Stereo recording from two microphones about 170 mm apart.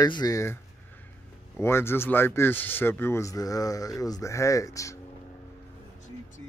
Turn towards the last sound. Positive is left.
turn(degrees=20)  # may be behind; listen again after turning